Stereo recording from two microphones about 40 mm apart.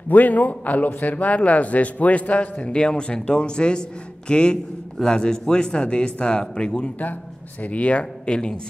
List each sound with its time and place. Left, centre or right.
0.1 s a man's voice: left
2.7 s a man's voice: left
7.6 s a man's voice: left
8.3 s a man's voice: left